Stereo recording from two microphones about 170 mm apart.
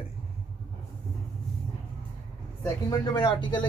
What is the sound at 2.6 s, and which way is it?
Speech, 20° left (ahead or behind).